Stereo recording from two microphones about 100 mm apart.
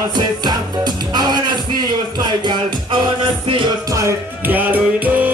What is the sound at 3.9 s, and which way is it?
Music, 30° right (ahead or behind).